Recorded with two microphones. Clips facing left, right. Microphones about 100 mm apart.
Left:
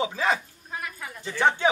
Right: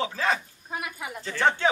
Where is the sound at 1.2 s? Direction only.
15° left (ahead or behind).